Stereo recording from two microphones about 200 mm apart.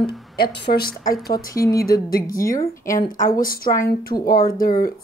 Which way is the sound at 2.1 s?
45° left (ahead or behind).